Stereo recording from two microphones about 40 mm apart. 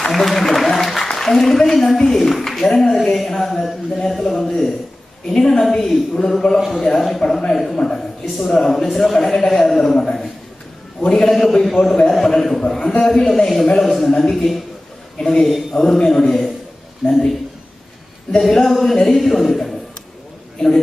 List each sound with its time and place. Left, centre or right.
0.1 s a man's voice: centre
6.6 s speech: centre
6.9 s a man's voice: centre
11.0 s a man's voice: centre
11.2 s a man's voice: centre
15.7 s a man's voice: centre
18.4 s a man's voice: centre